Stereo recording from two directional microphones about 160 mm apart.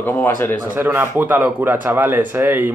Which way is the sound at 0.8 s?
15° right (ahead or behind).